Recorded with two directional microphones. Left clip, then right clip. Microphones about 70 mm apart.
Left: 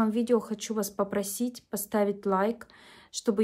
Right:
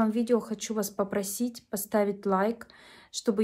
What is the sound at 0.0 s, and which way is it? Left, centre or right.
Speech, left.